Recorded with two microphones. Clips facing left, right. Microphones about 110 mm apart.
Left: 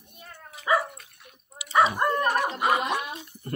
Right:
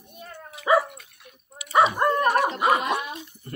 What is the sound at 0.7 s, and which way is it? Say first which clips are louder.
Dog: right 4 dB; 20° right (ahead or behind).